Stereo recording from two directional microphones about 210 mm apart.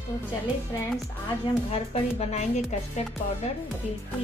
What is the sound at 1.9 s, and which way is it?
Speech, 30° left (ahead or behind).